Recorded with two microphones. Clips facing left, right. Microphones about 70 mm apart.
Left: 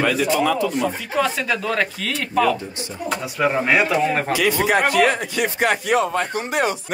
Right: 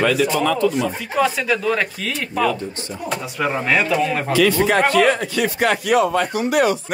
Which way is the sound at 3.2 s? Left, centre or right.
Centre.